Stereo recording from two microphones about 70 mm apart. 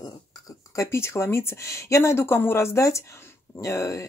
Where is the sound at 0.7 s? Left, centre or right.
Left.